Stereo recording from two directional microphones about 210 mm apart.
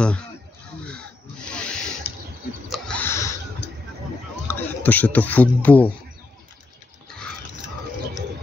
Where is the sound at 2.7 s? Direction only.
5° left (ahead or behind).